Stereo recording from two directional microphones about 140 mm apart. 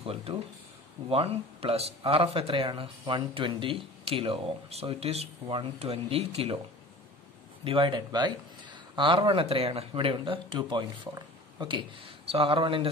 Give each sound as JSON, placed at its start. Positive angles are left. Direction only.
{"t": 0.0, "sound": "a sound", "side_deg": -45}
{"t": 1.0, "sound": "speech", "side_deg": -45}
{"t": 7.6, "sound": "speech", "side_deg": -40}